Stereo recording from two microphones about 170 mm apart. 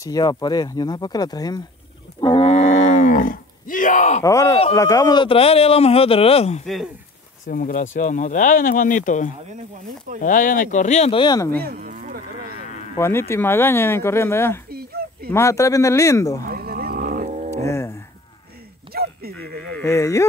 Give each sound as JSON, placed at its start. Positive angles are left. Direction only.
{"t": 0.0, "sound": "speech", "side_deg": 20}
{"t": 2.1, "sound": "wild animals", "side_deg": 25}
{"t": 2.4, "sound": "speech", "side_deg": 40}
{"t": 4.2, "sound": "speech", "side_deg": 20}
{"t": 6.6, "sound": "speech", "side_deg": 0}
{"t": 7.4, "sound": "speech", "side_deg": 55}
{"t": 11.5, "sound": "cattle", "side_deg": -65}
{"t": 12.9, "sound": "speech", "side_deg": 15}
{"t": 16.4, "sound": "cattle", "side_deg": -60}
{"t": 17.6, "sound": "speech", "side_deg": 15}
{"t": 18.9, "sound": "a sound", "side_deg": -60}
{"t": 19.8, "sound": "speech", "side_deg": 15}